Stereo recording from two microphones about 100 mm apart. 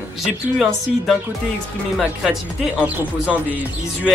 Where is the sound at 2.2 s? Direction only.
10° right (ahead or behind).